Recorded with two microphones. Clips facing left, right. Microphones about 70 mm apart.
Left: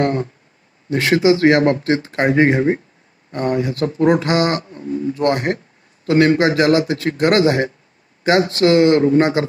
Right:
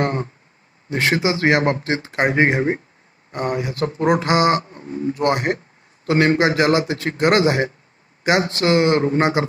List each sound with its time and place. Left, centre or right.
0.0 s speech: right
5.1 s speech: right